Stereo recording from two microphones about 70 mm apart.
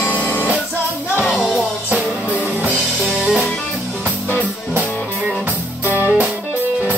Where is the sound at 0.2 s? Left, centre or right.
Left.